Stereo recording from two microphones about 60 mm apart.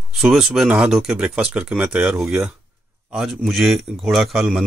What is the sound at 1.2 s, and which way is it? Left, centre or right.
A man's voice, centre.